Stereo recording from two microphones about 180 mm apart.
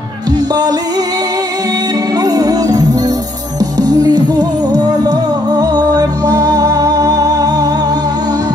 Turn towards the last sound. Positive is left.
turn(degrees=-20)  # may be behind; listen again after turning